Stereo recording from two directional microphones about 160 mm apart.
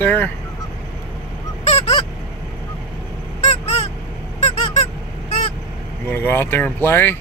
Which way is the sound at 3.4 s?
45° left (ahead or behind).